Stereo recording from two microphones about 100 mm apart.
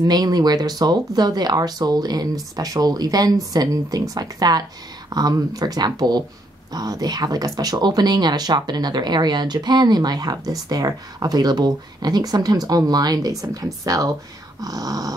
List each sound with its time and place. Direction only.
0.1 s speech: 40° right (ahead or behind)